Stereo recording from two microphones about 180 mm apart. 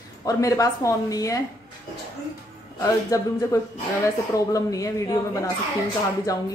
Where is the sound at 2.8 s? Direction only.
20° left (ahead or behind).